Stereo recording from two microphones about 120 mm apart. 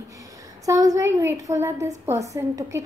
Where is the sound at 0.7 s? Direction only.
30° right (ahead or behind).